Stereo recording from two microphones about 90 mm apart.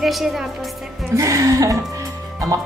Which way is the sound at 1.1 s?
35° right (ahead or behind).